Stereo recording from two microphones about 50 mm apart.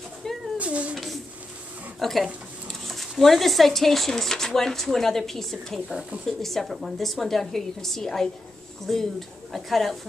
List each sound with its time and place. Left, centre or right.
0.6 s cat: right
0.9 s a sound: centre
2.0 s speech: centre